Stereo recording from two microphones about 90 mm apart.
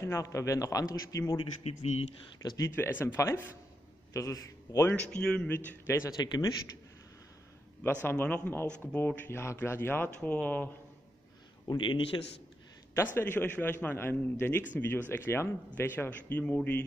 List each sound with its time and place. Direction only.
0.0 s a man's voice: 35° left (ahead or behind)
2.4 s a man's voice: 40° left (ahead or behind)
2.7 s a man's voice: 25° left (ahead or behind)
5.1 s a man's voice: 10° left (ahead or behind)
5.9 s speech: 40° left (ahead or behind)
7.8 s speech: 20° left (ahead or behind)
11.6 s a man's voice: 60° left (ahead or behind)
12.9 s speech: 25° left (ahead or behind)